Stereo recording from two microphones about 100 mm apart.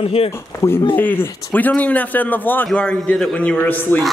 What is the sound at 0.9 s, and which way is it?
A man's voice, 20° left (ahead or behind).